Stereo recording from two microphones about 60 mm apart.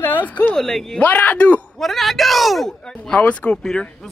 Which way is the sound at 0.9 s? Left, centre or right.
Left.